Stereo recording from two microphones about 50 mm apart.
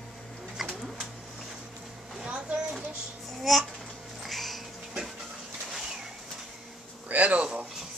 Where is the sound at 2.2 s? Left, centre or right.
Centre.